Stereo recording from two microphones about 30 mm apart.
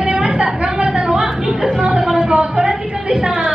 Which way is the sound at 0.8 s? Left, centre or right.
Right.